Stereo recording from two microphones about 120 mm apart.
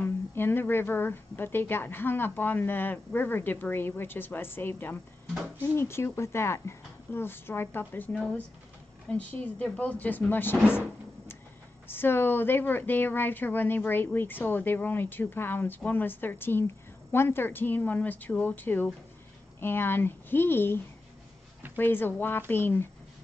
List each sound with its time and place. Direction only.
0.0 s a woman's voice: 20° left (ahead or behind)
11.9 s a woman's voice: 20° left (ahead or behind)